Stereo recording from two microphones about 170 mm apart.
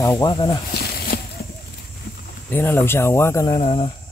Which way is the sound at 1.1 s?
60° left (ahead or behind).